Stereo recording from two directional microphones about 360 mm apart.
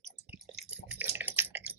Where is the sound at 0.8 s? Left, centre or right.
Centre.